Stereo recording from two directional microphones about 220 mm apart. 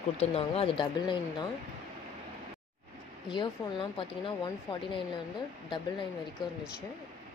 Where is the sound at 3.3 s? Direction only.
20° left (ahead or behind).